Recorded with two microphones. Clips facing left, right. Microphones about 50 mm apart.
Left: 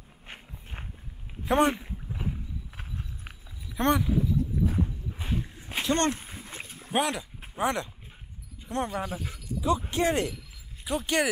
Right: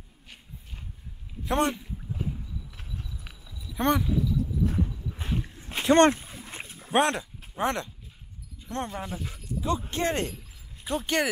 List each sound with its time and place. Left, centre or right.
0.3 s walk: left
1.4 s speech: centre
1.8 s boat: left
2.8 s horse: left
3.4 s a sound: left
3.7 s speech: centre
4.1 s boat: left
5.1 s a sound: centre
5.9 s speech: right
6.1 s a sound: left
6.6 s dog: centre
7.1 s speech: centre
8.9 s speech: centre